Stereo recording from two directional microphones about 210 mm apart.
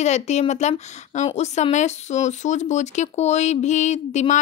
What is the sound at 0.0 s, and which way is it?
A woman's voice, 30° left (ahead or behind).